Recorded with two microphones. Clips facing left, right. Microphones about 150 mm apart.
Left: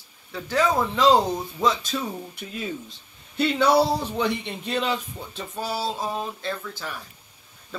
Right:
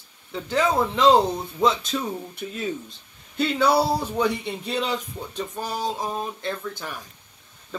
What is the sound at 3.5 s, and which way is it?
Speech, 10° right (ahead or behind).